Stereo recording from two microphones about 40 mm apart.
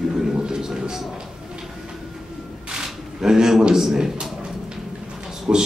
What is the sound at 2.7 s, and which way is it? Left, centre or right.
Speech, centre.